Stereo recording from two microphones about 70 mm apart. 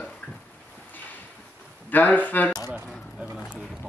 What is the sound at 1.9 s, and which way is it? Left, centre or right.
Speech, left.